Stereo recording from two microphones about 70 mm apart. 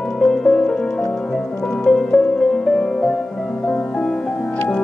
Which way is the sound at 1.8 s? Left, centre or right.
Centre.